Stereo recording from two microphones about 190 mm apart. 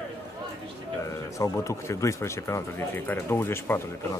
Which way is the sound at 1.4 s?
15° left (ahead or behind).